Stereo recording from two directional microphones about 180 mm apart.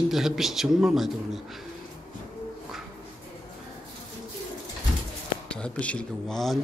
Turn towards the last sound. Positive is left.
turn(degrees=0)  # may be behind; listen again after turning